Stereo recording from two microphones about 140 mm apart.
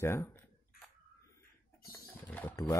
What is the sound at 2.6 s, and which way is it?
Speech, 25° left (ahead or behind).